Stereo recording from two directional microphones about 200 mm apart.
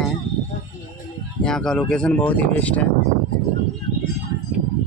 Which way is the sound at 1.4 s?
5° left (ahead or behind).